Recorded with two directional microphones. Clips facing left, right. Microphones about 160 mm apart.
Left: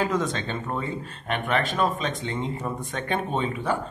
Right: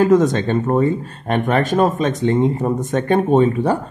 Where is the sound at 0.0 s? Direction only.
45° right (ahead or behind).